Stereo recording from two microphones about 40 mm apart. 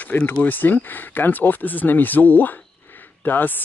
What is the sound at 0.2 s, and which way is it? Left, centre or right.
Speech, left.